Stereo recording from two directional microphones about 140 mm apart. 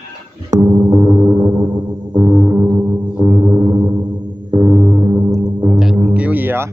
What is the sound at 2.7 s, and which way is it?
Music, 5° right (ahead or behind).